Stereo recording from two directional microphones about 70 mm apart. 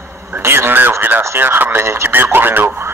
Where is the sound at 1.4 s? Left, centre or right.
Right.